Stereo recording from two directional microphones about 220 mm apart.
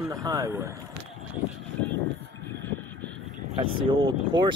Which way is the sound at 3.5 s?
20° right (ahead or behind).